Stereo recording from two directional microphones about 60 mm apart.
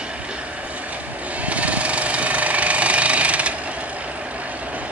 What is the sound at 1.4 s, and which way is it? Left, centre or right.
Engine, right.